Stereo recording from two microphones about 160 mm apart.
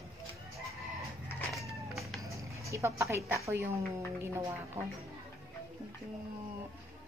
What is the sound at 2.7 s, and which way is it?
A woman's voice, 20° right (ahead or behind).